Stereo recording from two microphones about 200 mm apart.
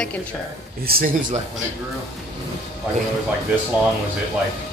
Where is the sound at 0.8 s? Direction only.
50° right (ahead or behind).